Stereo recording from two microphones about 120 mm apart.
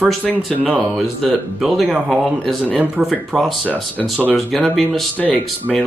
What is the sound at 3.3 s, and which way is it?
Speech, centre (ahead or behind).